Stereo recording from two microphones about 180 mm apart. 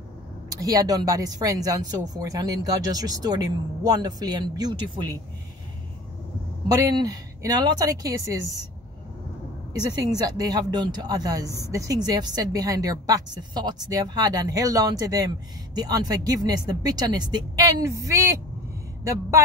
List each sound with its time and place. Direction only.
0.5 s speech: 20° right (ahead or behind)
6.7 s speech: 20° right (ahead or behind)
9.8 s speech: 20° right (ahead or behind)